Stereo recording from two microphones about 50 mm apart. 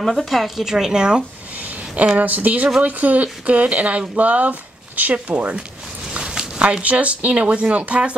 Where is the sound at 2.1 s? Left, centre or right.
Right.